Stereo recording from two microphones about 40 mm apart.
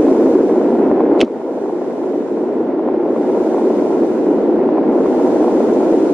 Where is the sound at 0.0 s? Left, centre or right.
Right.